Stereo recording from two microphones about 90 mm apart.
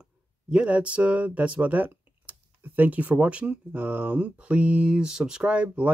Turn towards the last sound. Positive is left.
turn(degrees=-15)  # may be behind; listen again after turning